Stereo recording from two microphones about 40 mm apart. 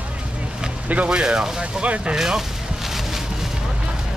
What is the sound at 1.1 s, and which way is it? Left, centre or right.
Speech, centre.